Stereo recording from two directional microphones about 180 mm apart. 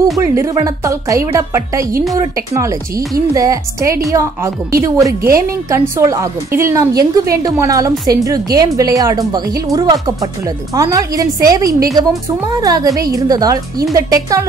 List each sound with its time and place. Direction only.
0.2 s a woman's voice: 15° right (ahead or behind)